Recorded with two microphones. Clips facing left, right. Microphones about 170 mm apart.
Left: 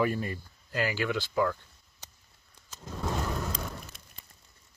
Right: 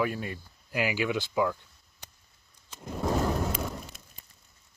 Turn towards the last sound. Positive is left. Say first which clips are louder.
# right 5 dB
turn(degrees=-15)  # may be behind; listen again after turning